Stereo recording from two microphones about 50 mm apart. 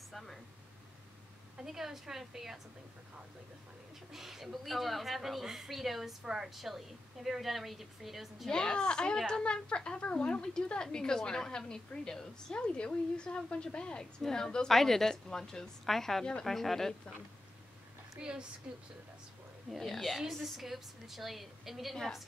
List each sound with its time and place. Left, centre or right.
1.6 s a woman's voice: centre
4.1 s a woman's voice: centre
8.5 s a woman's voice: centre
18.2 s a woman's voice: right
19.7 s a woman's voice: centre
21.9 s speech: centre